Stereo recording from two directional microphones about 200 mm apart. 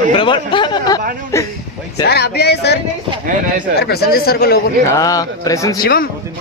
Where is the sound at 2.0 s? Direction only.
55° left (ahead or behind).